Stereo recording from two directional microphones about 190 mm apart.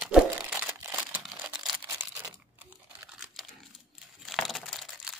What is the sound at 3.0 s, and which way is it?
Crumpling, 10° right (ahead or behind).